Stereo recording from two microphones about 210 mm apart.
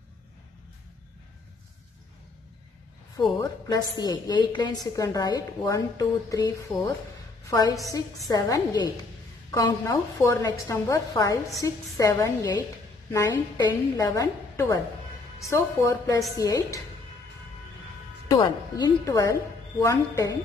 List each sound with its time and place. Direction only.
3.2 s a woman's voice: 15° left (ahead or behind)
18.3 s a woman's voice: 20° left (ahead or behind)